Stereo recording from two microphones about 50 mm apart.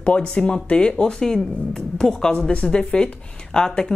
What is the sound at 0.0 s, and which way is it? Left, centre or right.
Speech, left.